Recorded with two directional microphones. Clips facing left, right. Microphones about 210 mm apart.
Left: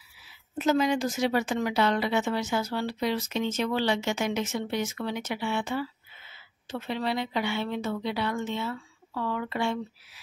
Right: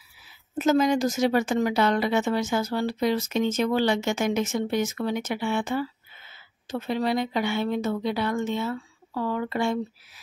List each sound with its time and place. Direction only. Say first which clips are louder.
0.6 s a woman's voice: right 3 dB; 45° right (ahead or behind)